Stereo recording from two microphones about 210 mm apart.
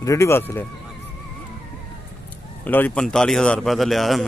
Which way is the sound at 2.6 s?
10° left (ahead or behind).